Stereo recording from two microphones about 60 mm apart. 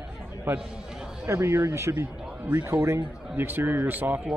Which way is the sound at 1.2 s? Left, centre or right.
Right.